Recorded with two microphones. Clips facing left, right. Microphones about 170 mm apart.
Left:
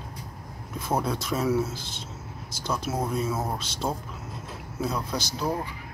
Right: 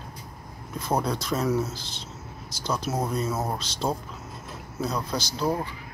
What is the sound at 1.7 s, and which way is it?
Speech, 50° left (ahead or behind).